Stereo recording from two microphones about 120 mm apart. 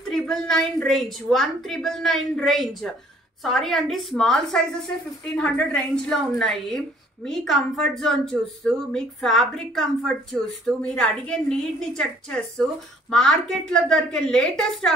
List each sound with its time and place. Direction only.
0.1 s a woman's voice: 5° left (ahead or behind)